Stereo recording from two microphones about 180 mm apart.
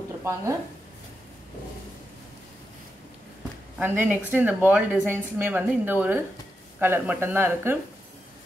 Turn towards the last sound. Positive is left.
turn(degrees=-10)  # may be behind; listen again after turning